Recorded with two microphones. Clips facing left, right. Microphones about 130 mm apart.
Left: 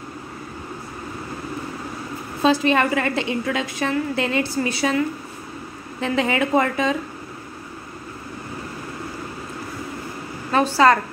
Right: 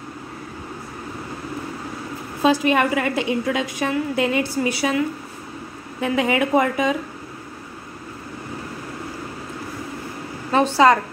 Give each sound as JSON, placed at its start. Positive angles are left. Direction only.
{"t": 2.4, "sound": "a woman's voice", "side_deg": -10}
{"t": 10.5, "sound": "a woman's voice", "side_deg": -20}